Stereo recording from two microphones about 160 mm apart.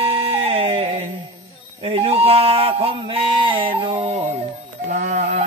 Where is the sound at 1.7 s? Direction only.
35° right (ahead or behind).